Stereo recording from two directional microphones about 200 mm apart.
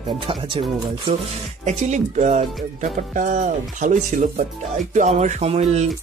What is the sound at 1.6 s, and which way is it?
Speech, 35° right (ahead or behind).